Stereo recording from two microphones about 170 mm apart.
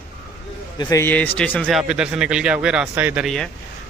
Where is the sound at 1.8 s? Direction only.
5° right (ahead or behind).